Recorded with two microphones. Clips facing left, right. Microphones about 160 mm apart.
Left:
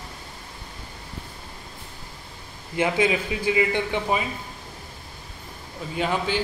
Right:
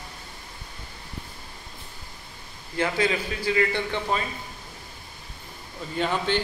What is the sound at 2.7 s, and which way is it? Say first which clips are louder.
Speech: left 3 dB; 15° left (ahead or behind).